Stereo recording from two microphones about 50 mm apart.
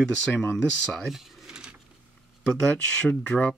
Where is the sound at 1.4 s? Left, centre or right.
Centre.